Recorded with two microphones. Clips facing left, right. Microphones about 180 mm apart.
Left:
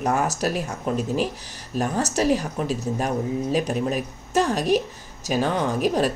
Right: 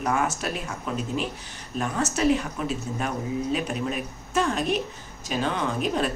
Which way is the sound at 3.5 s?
40° left (ahead or behind).